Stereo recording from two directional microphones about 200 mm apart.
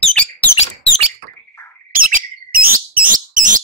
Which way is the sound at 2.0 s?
45° right (ahead or behind).